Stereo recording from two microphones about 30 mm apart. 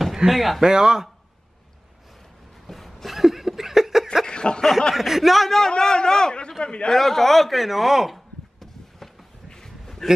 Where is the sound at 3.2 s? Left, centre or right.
Centre.